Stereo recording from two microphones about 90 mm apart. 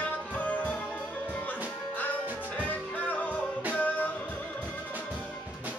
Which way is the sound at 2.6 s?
15° left (ahead or behind).